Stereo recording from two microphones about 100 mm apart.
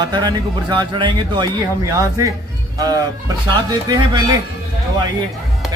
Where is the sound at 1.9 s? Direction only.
35° right (ahead or behind).